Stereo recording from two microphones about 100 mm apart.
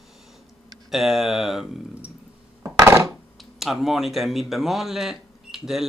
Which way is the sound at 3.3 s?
Centre (ahead or behind).